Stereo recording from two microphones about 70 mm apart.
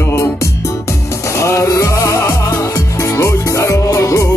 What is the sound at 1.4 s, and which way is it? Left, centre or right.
Music, left.